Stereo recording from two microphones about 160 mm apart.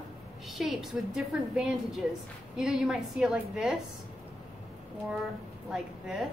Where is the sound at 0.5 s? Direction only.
Centre (ahead or behind).